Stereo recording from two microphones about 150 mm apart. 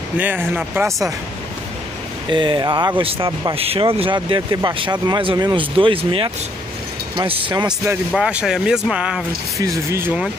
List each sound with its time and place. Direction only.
0.2 s speech: 10° right (ahead or behind)
2.2 s speech: 35° right (ahead or behind)
8.1 s speech: 5° right (ahead or behind)